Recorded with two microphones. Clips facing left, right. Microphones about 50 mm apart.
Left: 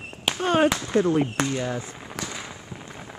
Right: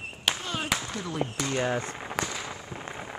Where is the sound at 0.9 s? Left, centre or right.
Left.